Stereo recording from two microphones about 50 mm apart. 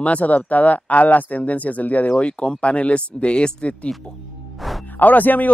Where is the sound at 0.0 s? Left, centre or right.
Left.